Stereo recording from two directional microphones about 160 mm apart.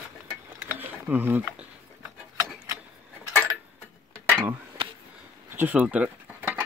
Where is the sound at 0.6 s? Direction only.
10° right (ahead or behind).